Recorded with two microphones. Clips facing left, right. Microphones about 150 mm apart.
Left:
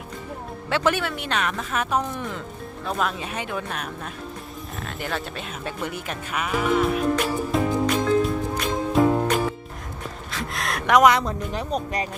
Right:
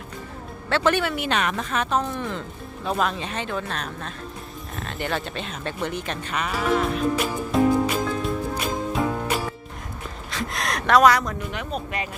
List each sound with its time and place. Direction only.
0.7 s speech: 10° left (ahead or behind)
1.0 s speech: 5° right (ahead or behind)
7.5 s music: centre (ahead or behind)
10.3 s a sound: centre (ahead or behind)
10.9 s speech: 20° left (ahead or behind); by 12.1 s 35° left (ahead or behind)